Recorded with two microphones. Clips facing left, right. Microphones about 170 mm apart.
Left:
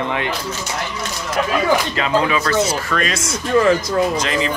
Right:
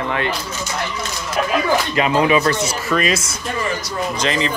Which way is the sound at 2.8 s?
5° right (ahead or behind).